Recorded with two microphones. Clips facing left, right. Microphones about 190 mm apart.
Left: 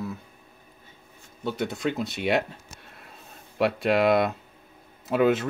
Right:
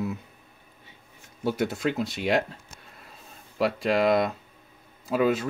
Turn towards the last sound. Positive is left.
turn(degrees=0)  # may be behind; listen again after turning